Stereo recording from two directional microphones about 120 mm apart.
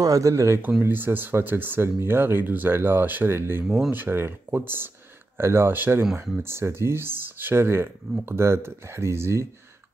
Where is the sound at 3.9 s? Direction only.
20° right (ahead or behind).